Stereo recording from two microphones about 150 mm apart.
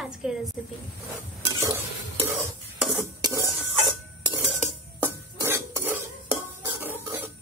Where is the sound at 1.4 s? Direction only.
20° right (ahead or behind).